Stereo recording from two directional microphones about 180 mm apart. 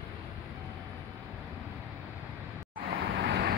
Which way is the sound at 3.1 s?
75° right (ahead or behind).